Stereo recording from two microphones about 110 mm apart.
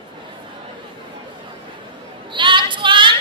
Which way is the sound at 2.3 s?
50° right (ahead or behind).